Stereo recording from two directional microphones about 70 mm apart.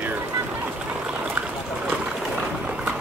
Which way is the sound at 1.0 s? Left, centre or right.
Centre.